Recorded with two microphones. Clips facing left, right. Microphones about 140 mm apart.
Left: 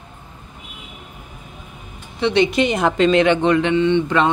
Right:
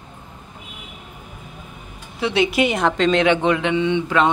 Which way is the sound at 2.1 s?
5° right (ahead or behind).